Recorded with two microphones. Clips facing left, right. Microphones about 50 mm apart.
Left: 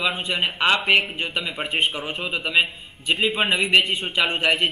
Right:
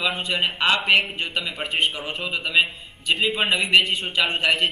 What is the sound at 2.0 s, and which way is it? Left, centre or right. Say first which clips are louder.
A man's voice: left 1 dB; centre.